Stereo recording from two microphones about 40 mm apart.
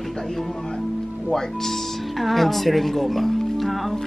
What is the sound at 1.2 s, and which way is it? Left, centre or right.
Speech, centre.